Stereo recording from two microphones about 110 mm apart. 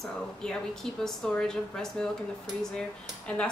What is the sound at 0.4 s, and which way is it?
A woman's voice, 5° left (ahead or behind).